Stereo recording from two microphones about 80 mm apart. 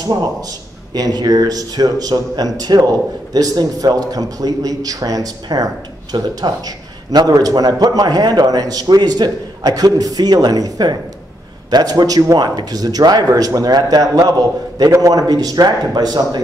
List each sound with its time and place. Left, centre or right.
0.0 s a man's voice: right
6.1 s a man's voice: right